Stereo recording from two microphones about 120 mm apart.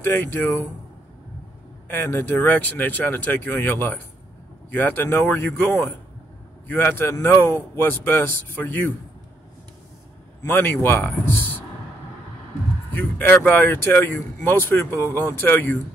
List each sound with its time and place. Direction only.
0.0 s a man's voice: 15° left (ahead or behind)
1.9 s a man's voice: 15° left (ahead or behind)
10.4 s a man's voice: 15° left (ahead or behind)
12.9 s a man's voice: 15° left (ahead or behind)